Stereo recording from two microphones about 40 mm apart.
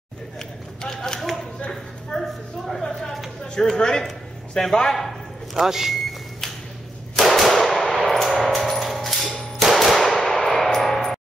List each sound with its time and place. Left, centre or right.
0.4 s a sound: centre
3.5 s a man's voice: centre
5.7 s speech: centre
7.2 s gunshot: centre
8.4 s a sound: centre
9.6 s clang: centre